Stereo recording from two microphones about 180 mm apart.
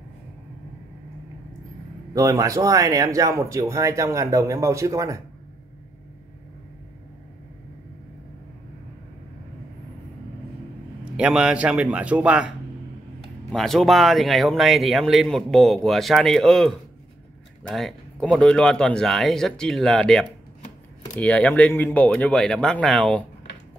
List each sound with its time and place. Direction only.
2.1 s speech: 20° right (ahead or behind)
11.1 s speech: 5° right (ahead or behind)